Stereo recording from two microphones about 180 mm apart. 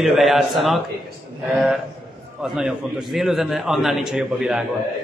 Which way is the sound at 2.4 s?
5° right (ahead or behind).